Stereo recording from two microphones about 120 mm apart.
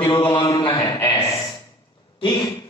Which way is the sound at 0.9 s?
20° left (ahead or behind).